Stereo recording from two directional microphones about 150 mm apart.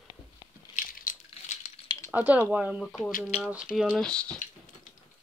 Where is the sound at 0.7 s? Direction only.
65° left (ahead or behind).